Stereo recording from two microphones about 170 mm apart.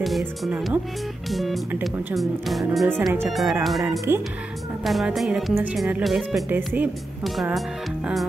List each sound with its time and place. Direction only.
0.0 s speech: centre (ahead or behind)
4.1 s speech: 15° right (ahead or behind)
4.8 s speech: centre (ahead or behind)
7.2 s speech: centre (ahead or behind)